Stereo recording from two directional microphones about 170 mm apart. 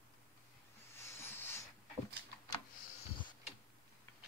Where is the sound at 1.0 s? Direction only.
15° left (ahead or behind).